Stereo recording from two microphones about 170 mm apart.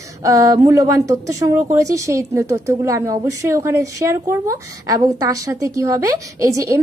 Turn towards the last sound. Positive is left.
turn(degrees=-20)  # may be behind; listen again after turning